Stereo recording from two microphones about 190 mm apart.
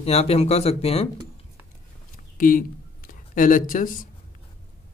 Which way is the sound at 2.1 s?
45° left (ahead or behind).